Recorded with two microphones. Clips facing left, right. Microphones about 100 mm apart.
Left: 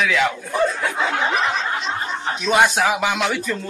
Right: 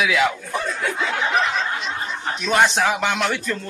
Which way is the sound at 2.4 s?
5° left (ahead or behind).